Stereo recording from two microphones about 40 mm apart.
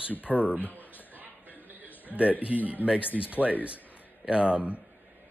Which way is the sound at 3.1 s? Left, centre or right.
Centre.